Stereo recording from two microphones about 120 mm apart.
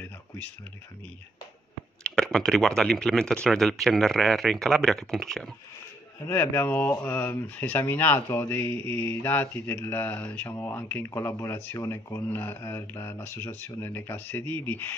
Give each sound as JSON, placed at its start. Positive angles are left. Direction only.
{"t": 2.0, "sound": "speech", "side_deg": 5}
{"t": 6.2, "sound": "speech", "side_deg": 20}